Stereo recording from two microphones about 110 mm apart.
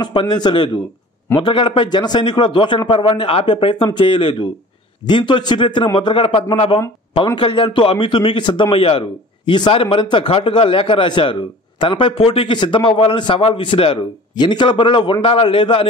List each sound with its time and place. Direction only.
0.0 s a man's voice: 45° left (ahead or behind)
8.7 s a man's voice: 60° left (ahead or behind)
14.3 s a man's voice: 40° left (ahead or behind)